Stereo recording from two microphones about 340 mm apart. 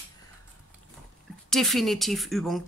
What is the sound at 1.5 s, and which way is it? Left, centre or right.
Speech, centre.